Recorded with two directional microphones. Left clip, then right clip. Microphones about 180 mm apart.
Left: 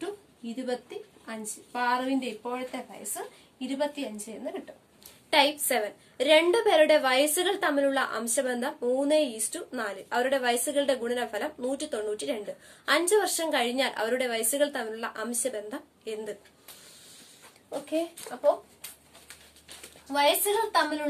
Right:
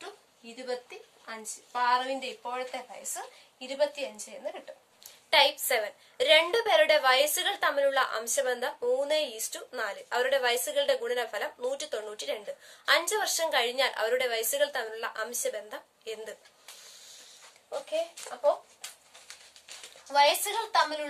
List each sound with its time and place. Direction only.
1.2 s a woman's voice: 15° right (ahead or behind)
5.3 s a woman's voice: 10° left (ahead or behind)
20.1 s a woman's voice: 15° right (ahead or behind)